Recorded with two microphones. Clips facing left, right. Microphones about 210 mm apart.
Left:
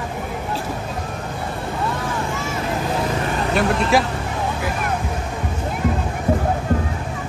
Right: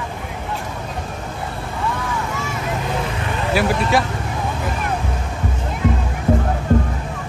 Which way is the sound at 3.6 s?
Centre (ahead or behind).